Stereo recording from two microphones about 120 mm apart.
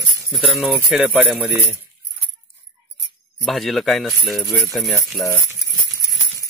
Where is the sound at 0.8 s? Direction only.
5° right (ahead or behind).